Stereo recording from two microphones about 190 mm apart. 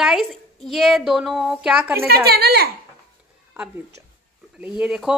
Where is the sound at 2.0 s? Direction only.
55° right (ahead or behind).